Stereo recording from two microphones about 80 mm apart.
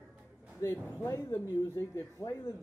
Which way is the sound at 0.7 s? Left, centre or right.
Left.